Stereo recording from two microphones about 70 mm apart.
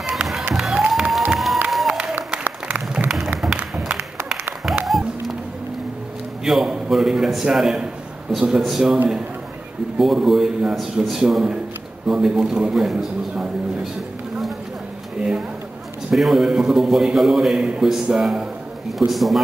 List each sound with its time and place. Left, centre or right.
0.2 s a sound: centre
0.6 s applause: centre
1.3 s crowd: centre
1.7 s applause: centre
2.3 s applause: centre
3.4 s music: centre
4.8 s a sound: centre
6.4 s a man's voice: centre
9.9 s a man's voice: centre
15.1 s a sound: centre
16.1 s a man's voice: centre